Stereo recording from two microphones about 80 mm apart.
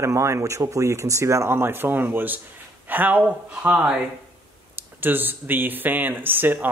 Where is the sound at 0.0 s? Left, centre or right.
Right.